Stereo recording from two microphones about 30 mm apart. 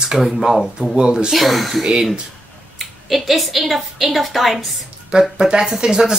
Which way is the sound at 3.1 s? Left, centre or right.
Centre.